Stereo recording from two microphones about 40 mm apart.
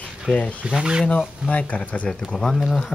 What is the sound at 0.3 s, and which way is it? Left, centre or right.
Speech, left.